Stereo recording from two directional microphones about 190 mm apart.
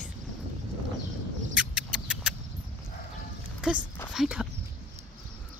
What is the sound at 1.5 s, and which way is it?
Rodents, 5° right (ahead or behind).